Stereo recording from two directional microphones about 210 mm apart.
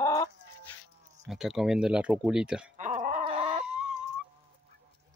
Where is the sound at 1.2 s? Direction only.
Centre (ahead or behind).